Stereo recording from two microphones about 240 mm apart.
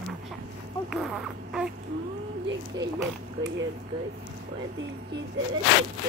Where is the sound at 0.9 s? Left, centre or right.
Centre.